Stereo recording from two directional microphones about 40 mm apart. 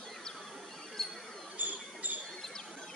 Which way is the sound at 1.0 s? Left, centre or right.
Centre.